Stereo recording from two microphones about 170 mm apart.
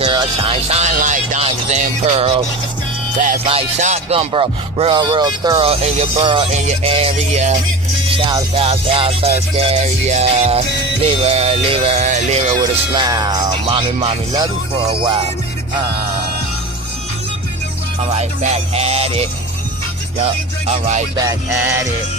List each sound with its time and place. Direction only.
0.0 s music: 30° right (ahead or behind)
3.8 s music: 40° right (ahead or behind)
5.7 s music: 40° right (ahead or behind)
8.2 s music: 25° right (ahead or behind)
13.0 s music: 25° right (ahead or behind)
18.1 s music: 40° right (ahead or behind)
21.2 s music: 25° right (ahead or behind)
21.5 s music: 10° right (ahead or behind)